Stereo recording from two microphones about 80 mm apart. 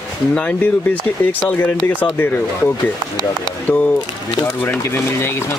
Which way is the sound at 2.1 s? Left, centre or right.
Left.